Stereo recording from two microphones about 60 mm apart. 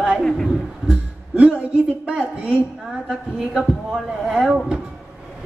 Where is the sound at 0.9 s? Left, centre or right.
Centre.